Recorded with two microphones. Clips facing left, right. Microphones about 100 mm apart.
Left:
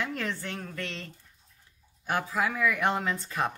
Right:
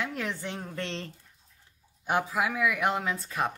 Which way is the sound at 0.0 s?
10° right (ahead or behind).